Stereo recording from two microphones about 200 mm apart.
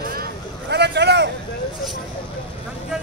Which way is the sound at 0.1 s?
50° right (ahead or behind).